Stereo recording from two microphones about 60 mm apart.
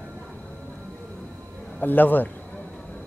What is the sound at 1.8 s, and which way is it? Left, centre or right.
Speech, left.